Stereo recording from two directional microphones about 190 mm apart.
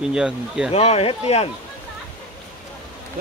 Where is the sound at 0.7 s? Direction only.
30° left (ahead or behind).